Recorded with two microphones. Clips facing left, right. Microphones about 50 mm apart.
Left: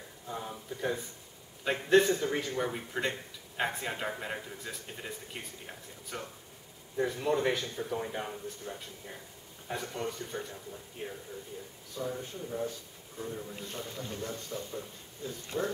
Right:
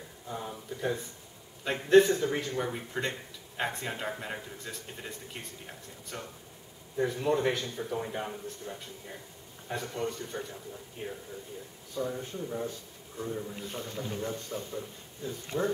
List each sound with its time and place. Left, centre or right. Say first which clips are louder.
0.3 s a man's voice: right 1 dB; centre